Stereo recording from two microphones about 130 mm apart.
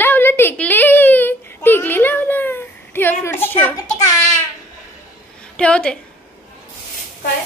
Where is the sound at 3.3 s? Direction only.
15° left (ahead or behind).